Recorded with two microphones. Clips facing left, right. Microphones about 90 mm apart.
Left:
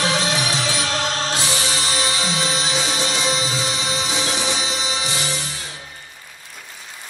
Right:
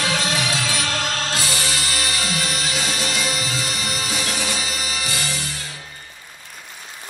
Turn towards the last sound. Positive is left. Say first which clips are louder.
# left 2 dB
turn(degrees=20)  # may be behind; listen again after turning